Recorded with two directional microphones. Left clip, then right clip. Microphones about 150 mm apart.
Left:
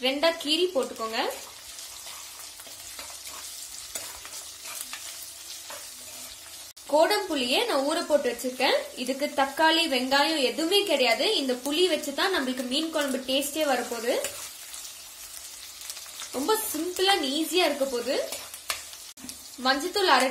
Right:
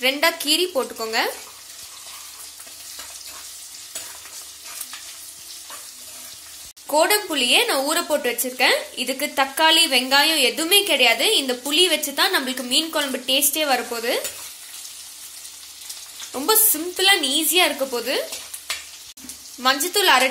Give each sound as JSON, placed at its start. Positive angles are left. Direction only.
{"t": 0.0, "sound": "a woman's voice", "side_deg": -15}
{"t": 7.0, "sound": "a woman's voice", "side_deg": -15}
{"t": 16.3, "sound": "a woman's voice", "side_deg": -10}
{"t": 19.6, "sound": "a woman's voice", "side_deg": -15}